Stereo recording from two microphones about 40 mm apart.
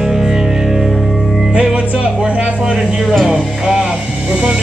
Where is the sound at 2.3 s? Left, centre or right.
Right.